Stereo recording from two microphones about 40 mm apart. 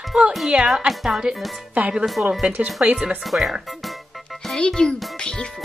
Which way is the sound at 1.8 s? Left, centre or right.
Right.